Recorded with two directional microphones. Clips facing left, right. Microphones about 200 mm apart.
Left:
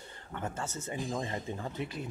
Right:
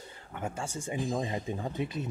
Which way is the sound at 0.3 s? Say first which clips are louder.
Right 1 dB; 10° right (ahead or behind).